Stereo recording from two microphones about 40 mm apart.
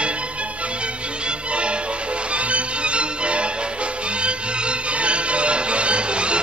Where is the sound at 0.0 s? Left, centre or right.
Right.